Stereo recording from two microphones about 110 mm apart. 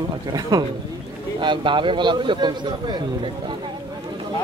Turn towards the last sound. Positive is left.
turn(degrees=-45)  # may be behind; listen again after turning